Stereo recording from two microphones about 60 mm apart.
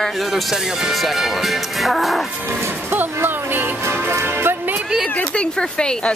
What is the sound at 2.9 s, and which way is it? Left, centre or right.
Speech, right.